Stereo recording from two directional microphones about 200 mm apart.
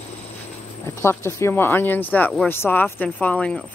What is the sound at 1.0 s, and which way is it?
Speech, 15° left (ahead or behind).